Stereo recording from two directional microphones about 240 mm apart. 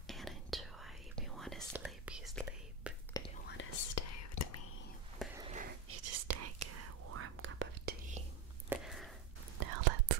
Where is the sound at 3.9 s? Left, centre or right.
Left.